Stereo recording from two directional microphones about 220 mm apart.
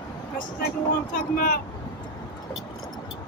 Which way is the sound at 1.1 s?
40° left (ahead or behind).